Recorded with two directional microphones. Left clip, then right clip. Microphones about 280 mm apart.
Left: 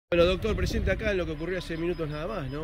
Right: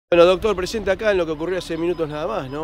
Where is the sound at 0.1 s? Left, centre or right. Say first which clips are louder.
Right 10 dB; centre.